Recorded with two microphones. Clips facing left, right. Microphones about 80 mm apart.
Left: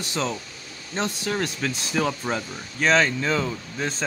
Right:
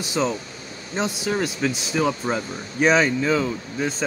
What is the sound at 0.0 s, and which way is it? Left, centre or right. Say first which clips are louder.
Speech: right 4 dB; centre.